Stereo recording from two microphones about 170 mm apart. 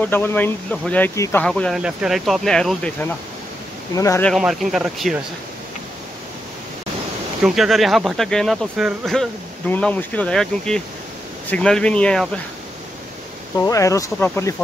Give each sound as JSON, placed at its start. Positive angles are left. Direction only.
{"t": 0.0, "sound": "speech", "side_deg": 10}
{"t": 1.4, "sound": "speech", "side_deg": 5}
{"t": 3.9, "sound": "speech", "side_deg": 20}
{"t": 4.3, "sound": "speech", "side_deg": 0}
{"t": 7.4, "sound": "speech", "side_deg": 0}
{"t": 13.7, "sound": "speech", "side_deg": 20}